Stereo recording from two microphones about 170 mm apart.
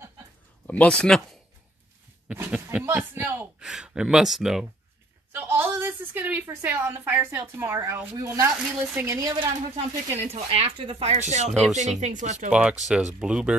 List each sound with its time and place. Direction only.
0.7 s speech: 5° left (ahead or behind)
2.2 s a woman's voice: 10° right (ahead or behind)
9.8 s speech: 40° right (ahead or behind)
12.4 s speech: 5° right (ahead or behind)